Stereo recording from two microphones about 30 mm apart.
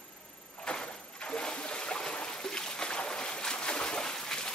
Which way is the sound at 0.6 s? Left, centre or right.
Left.